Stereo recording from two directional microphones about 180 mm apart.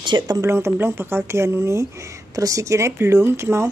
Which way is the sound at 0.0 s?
25° right (ahead or behind).